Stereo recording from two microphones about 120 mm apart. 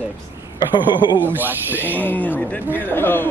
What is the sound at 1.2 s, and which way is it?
Speech, 15° right (ahead or behind).